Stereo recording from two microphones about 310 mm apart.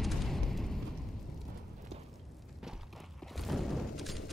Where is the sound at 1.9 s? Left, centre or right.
Centre.